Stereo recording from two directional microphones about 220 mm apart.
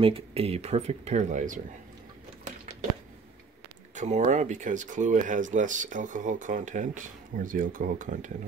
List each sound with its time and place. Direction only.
0.0 s speech: 25° right (ahead or behind)
3.9 s speech: 35° right (ahead or behind)